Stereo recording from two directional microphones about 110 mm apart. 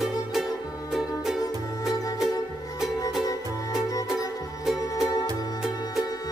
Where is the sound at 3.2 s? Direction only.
35° left (ahead or behind).